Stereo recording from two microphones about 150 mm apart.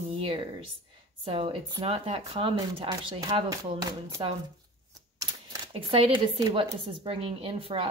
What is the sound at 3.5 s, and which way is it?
Speech, 25° right (ahead or behind).